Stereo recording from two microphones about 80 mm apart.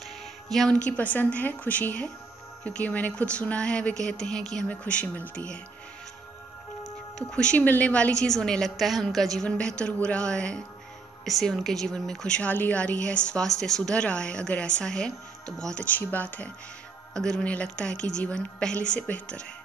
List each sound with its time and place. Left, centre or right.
0.5 s a woman's voice: centre
7.2 s a woman's voice: centre
17.1 s a woman's voice: centre